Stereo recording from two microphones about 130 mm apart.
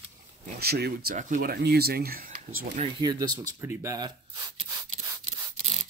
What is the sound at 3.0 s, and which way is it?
Speech, 30° right (ahead or behind).